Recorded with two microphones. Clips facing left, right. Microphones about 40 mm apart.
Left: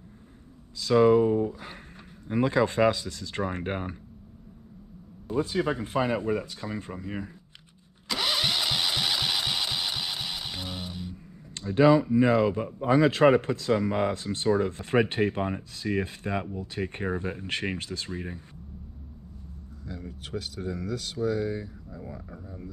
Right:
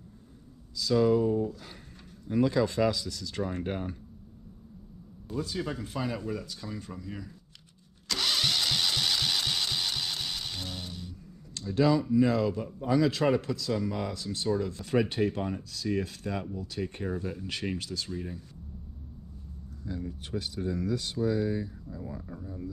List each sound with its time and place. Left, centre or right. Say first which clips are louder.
0.7 s a man's voice: left 5 dB; left
5.3 s a man's voice: left 7 dB; left
8.1 s engine starting: left 2 dB; centre
11.5 s a man's voice: left 5 dB; left
19.9 s speech: right 1 dB; left